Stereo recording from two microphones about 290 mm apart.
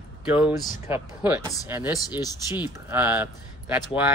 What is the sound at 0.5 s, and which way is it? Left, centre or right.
Speech, centre.